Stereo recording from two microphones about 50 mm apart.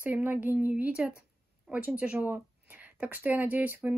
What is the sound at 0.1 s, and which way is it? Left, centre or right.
Speech, right.